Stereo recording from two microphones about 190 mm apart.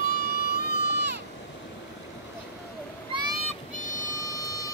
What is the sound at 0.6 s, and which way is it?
Run, 60° right (ahead or behind).